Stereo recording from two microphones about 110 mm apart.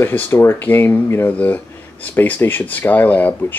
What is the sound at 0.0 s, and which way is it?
Speech, 20° left (ahead or behind).